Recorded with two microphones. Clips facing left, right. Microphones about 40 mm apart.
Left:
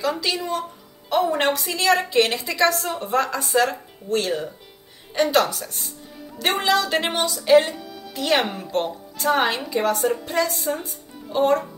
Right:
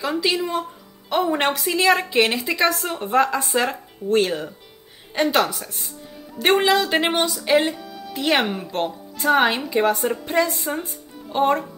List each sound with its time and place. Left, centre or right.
0.0 s speech: centre
7.7 s music: centre
8.1 s speech: centre